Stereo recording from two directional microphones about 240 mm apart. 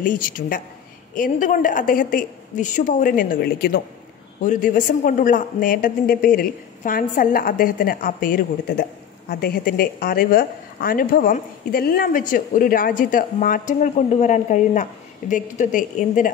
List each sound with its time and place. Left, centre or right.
0.0 s a woman's voice: left